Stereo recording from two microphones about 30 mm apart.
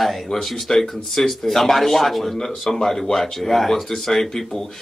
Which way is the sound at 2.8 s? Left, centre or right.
Centre.